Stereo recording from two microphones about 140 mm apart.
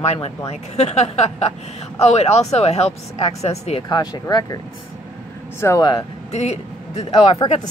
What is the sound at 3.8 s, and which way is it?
Speech, 30° left (ahead or behind).